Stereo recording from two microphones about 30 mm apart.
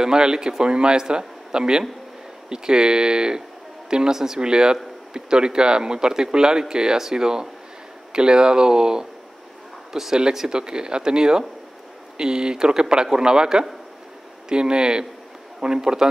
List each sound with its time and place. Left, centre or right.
0.0 s speech: right
4.1 s speech: centre
4.4 s speech: right
9.9 s speech: centre
10.5 s speech: right